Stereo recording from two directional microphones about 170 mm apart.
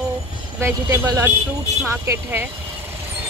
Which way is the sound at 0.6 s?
15° right (ahead or behind).